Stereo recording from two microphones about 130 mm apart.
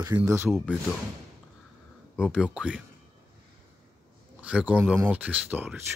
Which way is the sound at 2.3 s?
10° right (ahead or behind).